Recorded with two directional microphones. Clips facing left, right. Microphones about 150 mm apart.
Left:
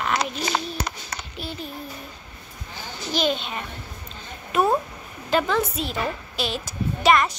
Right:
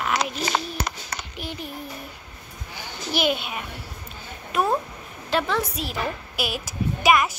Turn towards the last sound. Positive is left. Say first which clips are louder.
# left 1 dB
turn(degrees=-5)  # may be behind; listen again after turning